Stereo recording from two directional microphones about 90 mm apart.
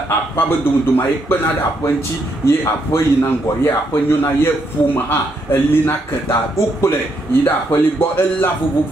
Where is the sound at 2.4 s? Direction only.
25° left (ahead or behind).